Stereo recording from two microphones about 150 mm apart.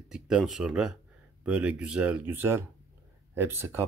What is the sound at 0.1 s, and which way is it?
Speech, 5° right (ahead or behind).